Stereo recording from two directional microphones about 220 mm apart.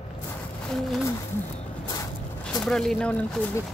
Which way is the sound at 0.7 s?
Centre (ahead or behind).